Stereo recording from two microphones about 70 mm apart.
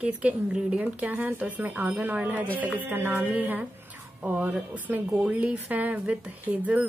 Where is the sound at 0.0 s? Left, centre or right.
Centre.